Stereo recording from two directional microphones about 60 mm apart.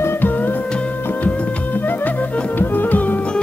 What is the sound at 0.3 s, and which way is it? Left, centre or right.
Music, left.